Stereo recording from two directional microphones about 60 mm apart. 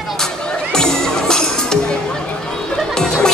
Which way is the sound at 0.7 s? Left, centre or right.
Centre.